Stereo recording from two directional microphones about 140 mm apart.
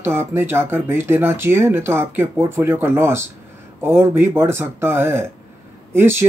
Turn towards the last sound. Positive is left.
turn(degrees=-15)  # may be behind; listen again after turning